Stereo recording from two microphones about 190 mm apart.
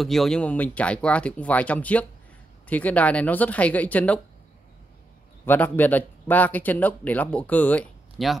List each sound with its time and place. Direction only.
0.0 s speech: centre (ahead or behind)
5.4 s speech: 10° left (ahead or behind)